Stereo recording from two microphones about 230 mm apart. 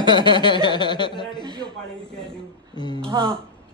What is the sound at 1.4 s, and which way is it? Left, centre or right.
Speech, centre.